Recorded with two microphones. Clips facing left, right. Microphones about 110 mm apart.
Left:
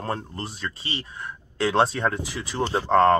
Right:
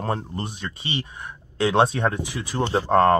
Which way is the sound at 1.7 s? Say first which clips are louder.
Right 2 dB; 20° right (ahead or behind).